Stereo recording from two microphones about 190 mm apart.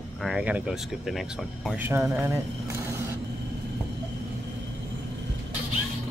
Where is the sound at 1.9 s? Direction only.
15° right (ahead or behind).